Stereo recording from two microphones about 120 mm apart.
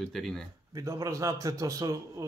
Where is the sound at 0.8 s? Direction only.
25° right (ahead or behind).